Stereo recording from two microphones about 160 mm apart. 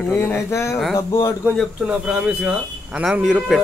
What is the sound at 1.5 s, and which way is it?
Speech, 5° right (ahead or behind).